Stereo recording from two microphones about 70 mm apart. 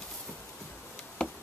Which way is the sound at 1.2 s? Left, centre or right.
Centre.